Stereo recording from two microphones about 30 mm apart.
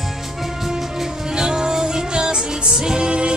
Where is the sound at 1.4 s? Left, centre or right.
Right.